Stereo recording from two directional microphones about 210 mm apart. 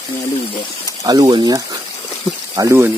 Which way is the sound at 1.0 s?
20° right (ahead or behind).